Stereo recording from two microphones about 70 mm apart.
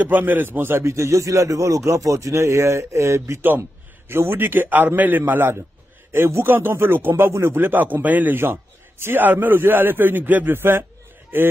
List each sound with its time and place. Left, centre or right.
0.0 s a man's voice: right